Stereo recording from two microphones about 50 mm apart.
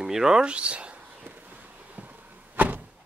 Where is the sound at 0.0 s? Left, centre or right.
Centre.